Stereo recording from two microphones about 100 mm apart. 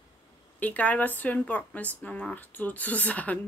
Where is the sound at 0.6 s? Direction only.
15° left (ahead or behind).